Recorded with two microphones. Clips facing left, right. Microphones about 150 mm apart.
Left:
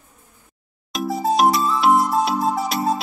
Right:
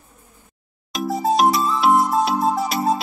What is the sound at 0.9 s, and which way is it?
Music, centre (ahead or behind).